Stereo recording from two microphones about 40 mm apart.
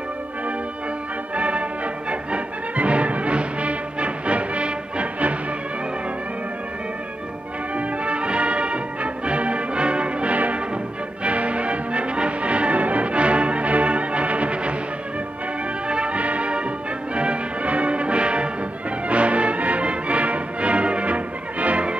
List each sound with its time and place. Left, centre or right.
1.3 s music: right
7.7 s music: right
15.9 s music: right